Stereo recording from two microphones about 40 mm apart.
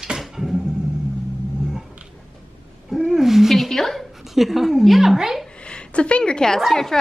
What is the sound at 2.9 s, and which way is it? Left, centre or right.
Wail, centre.